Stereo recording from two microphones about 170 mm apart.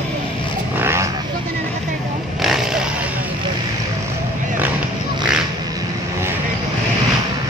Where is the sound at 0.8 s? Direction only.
15° right (ahead or behind).